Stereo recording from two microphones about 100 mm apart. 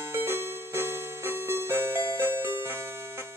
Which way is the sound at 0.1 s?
25° right (ahead or behind).